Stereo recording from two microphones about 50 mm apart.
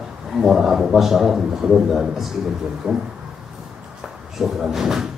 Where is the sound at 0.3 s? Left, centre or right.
Centre.